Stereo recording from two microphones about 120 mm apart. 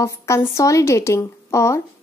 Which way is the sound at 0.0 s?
25° left (ahead or behind).